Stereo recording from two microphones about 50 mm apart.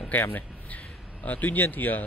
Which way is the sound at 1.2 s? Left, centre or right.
Left.